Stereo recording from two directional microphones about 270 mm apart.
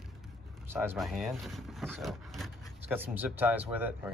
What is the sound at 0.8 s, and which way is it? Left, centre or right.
Speech, centre.